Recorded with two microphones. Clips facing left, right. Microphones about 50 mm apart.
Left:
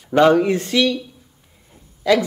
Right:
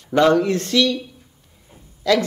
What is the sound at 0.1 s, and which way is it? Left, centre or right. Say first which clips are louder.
Speech: left 2 dB; centre.